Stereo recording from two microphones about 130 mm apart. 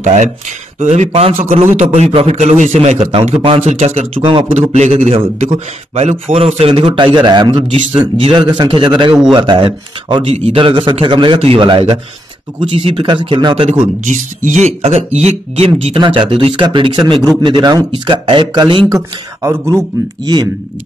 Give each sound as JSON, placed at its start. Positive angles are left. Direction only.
{"t": 0.0, "sound": "a man's voice", "side_deg": -65}
{"t": 4.2, "sound": "speech", "side_deg": -40}
{"t": 4.6, "sound": "a man's voice", "side_deg": -60}
{"t": 10.3, "sound": "speech", "side_deg": -50}
{"t": 10.6, "sound": "speech", "side_deg": -40}
{"t": 13.7, "sound": "speech", "side_deg": -70}
{"t": 14.8, "sound": "speech", "side_deg": -55}
{"t": 18.9, "sound": "speech", "side_deg": -25}